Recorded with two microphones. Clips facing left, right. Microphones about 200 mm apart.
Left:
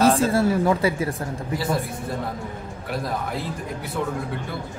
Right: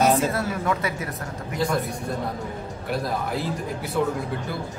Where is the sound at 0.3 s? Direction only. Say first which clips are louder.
Left 6 dB; 30° left (ahead or behind).